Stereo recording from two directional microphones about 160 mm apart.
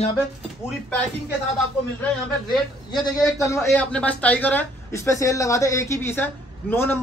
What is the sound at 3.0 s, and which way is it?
Speech, 20° left (ahead or behind).